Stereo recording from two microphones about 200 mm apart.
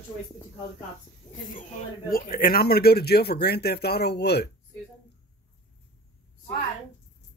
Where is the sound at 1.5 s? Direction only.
45° left (ahead or behind).